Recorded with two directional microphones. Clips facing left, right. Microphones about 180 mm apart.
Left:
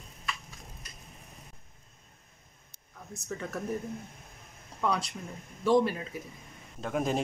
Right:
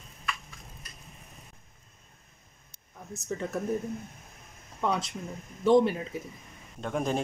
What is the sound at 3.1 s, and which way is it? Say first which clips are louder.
Speech: right 4 dB; 25° right (ahead or behind).